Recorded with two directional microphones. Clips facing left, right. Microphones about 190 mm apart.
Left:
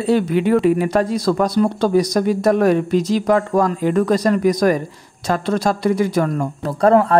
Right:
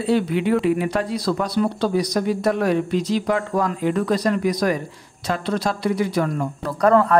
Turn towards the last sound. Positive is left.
turn(degrees=30)  # may be behind; listen again after turning